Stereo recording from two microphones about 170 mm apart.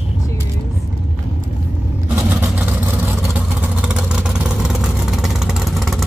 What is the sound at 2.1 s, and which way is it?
Vehicle, 15° right (ahead or behind).